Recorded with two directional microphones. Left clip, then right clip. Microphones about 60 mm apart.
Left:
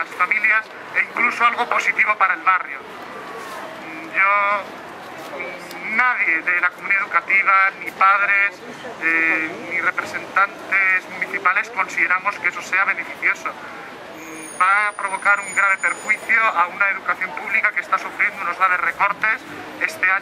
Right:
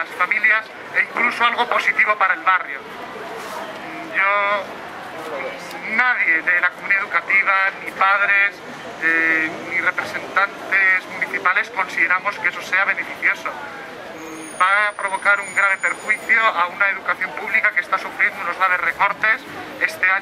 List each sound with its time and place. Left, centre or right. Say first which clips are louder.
0.0 s speech: even; centre
4.1 s speech: left 1 dB; centre
5.9 s speech: right 1 dB; centre
14.6 s speech: even; centre